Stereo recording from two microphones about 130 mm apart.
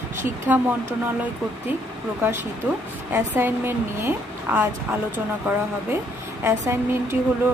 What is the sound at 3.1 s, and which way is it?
Speech, 15° right (ahead or behind).